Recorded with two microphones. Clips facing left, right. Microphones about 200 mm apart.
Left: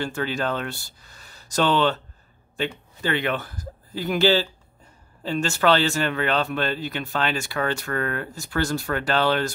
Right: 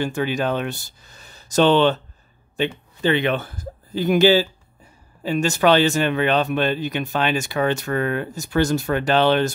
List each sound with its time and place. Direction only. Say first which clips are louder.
0.0 s speech: right 4 dB; 15° right (ahead or behind)
3.0 s speech: right 5 dB; 20° right (ahead or behind)